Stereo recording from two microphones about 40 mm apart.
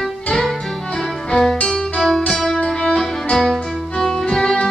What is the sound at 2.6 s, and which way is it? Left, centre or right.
Music, left.